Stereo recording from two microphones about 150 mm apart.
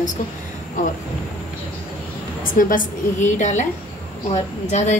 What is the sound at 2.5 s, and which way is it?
A woman's voice, 65° left (ahead or behind).